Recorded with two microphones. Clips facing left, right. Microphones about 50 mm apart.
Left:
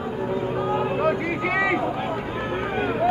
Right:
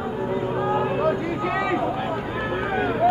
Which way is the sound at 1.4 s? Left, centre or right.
Left.